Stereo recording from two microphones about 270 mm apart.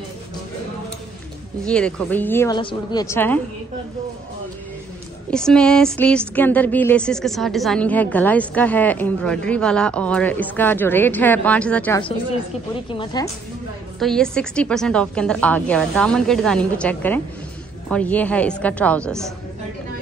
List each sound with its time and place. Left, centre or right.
1.7 s a woman's voice: centre
5.3 s a woman's voice: centre
12.9 s a woman's voice: centre
13.9 s a woman's voice: centre